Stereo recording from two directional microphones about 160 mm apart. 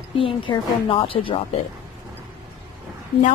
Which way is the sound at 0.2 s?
35° left (ahead or behind).